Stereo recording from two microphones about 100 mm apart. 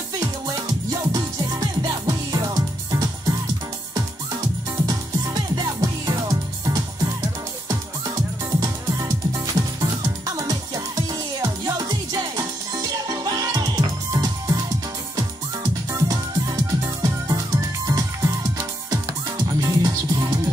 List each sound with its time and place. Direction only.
1.1 s music: 40° right (ahead or behind)
4.8 s music: 40° right (ahead or behind)
8.5 s music: 40° right (ahead or behind)
15.9 s music: 40° right (ahead or behind)